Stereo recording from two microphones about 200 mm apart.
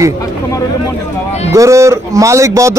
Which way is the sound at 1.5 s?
15° right (ahead or behind).